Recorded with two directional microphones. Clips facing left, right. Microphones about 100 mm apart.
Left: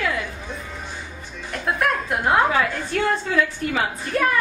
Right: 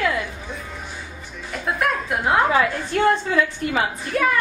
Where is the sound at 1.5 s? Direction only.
Centre (ahead or behind).